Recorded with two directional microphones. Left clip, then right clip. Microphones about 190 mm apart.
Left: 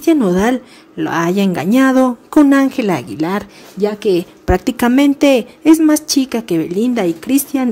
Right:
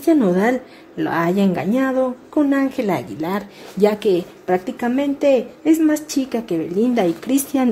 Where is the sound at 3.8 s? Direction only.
5° left (ahead or behind).